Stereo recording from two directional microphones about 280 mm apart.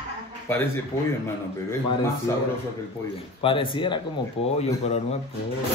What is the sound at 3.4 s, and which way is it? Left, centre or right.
Speech, centre.